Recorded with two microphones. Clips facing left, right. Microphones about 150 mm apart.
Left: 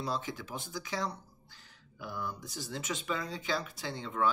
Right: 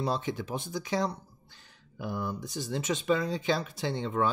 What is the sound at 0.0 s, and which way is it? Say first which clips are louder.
Speech: right 5 dB; 25° right (ahead or behind).